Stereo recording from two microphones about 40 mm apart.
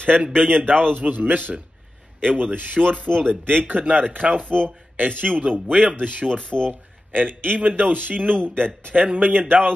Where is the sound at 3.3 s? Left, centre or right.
Right.